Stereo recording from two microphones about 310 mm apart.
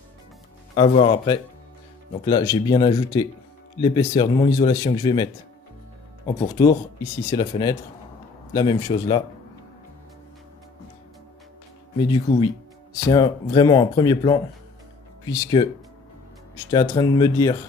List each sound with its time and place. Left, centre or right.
0.7 s speech: centre
12.0 s speech: centre
16.7 s speech: centre